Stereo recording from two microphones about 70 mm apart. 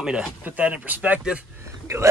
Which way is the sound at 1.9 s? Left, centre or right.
Right.